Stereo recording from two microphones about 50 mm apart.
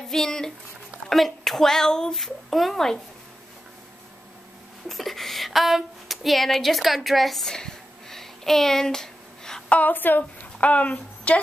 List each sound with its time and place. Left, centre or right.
0.1 s speech: centre
2.1 s speech: centre
4.8 s a woman's voice: centre
9.7 s a woman's voice: left